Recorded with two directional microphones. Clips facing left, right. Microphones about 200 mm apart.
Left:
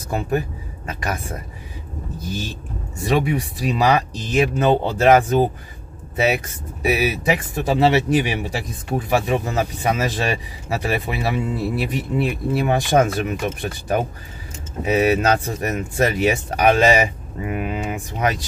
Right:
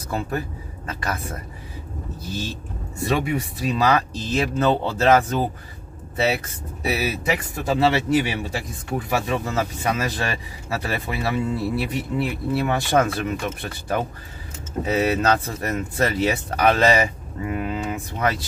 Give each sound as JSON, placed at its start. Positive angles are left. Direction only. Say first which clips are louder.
{"t": 0.1, "sound": "speech", "louder": "left 4 dB", "side_deg": 15}